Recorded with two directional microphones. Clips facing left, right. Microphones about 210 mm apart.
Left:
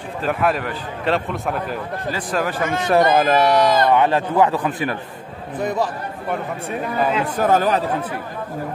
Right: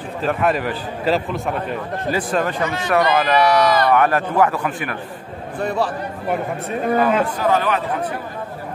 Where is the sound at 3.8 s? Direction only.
20° left (ahead or behind).